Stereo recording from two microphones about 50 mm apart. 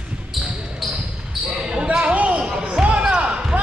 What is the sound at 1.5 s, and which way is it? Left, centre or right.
Basketball bounce, centre.